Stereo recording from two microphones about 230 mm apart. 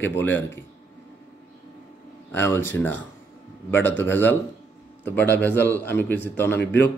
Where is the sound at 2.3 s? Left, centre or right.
Centre.